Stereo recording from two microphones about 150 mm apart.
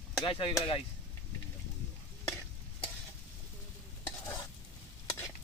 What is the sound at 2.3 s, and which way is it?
Stir, 15° left (ahead or behind).